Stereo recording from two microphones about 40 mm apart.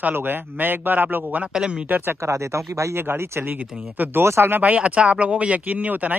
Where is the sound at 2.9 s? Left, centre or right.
Right.